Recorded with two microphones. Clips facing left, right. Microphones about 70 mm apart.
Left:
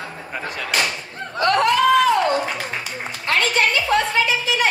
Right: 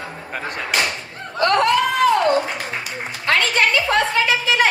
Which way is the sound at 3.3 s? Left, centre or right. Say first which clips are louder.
Right 1 dB; right.